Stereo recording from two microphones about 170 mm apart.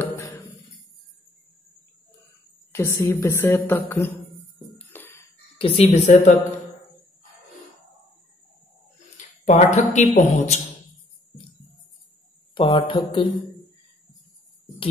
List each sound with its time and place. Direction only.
2.7 s a woman's voice: 15° left (ahead or behind)
4.7 s music: 10° left (ahead or behind)
5.6 s speech: 35° left (ahead or behind)
9.1 s speech: 45° left (ahead or behind)
12.5 s speech: 30° left (ahead or behind)